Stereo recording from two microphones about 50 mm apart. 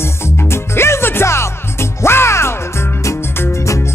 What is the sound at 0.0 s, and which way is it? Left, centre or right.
Music, left.